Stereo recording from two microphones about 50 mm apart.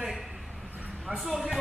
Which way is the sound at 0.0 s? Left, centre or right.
Centre.